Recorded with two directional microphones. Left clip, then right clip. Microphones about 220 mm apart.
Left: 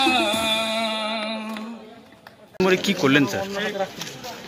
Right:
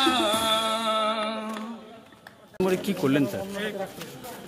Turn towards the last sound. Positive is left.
turn(degrees=0)  # may be behind; listen again after turning